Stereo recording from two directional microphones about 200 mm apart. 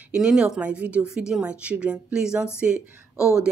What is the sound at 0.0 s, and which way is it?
A woman's voice, 5° right (ahead or behind).